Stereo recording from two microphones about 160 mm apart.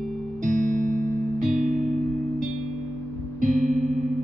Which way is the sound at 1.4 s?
5° right (ahead or behind).